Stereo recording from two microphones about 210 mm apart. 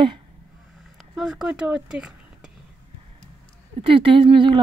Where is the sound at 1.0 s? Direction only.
Centre (ahead or behind).